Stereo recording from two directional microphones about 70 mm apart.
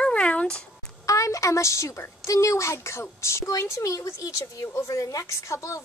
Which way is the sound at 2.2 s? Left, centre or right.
Left.